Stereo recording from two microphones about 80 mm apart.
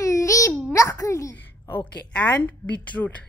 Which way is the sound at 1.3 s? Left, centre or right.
Left.